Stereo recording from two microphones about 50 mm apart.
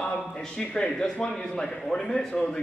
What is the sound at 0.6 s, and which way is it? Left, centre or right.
A man's voice, centre.